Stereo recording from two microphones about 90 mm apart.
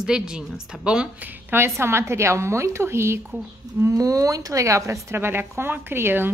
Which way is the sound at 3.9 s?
40° right (ahead or behind).